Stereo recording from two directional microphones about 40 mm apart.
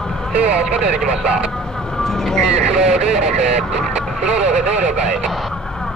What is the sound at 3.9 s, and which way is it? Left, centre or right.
Speech, right.